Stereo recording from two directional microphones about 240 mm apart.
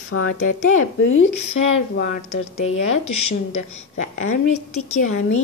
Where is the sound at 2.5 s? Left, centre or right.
Left.